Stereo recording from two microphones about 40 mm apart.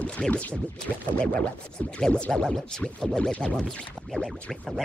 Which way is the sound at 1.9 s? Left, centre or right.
Left.